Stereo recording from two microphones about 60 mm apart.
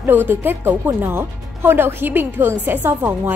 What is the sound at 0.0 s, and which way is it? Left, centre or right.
Speech, right.